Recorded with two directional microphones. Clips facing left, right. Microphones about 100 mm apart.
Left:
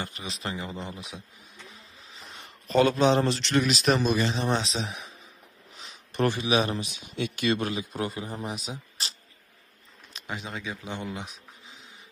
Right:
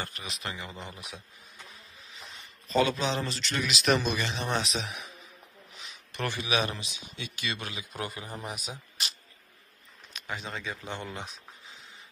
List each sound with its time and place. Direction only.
0.0 s a man's voice: 25° left (ahead or behind)
2.4 s a man's voice: 55° left (ahead or behind)
3.8 s a man's voice: 30° left (ahead or behind)
5.8 s a sound: 35° left (ahead or behind)
6.8 s speech: 55° left (ahead or behind)
7.9 s a man's voice: 25° left (ahead or behind)
10.1 s speech: 20° left (ahead or behind)